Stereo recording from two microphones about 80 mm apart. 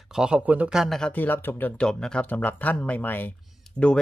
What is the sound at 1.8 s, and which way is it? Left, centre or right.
Speech, centre.